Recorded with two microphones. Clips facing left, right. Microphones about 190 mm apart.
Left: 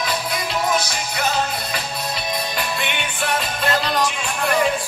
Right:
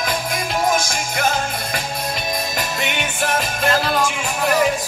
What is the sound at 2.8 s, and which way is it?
Music, 45° right (ahead or behind).